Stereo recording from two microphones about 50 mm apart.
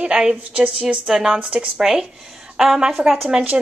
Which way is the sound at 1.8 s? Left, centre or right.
Centre.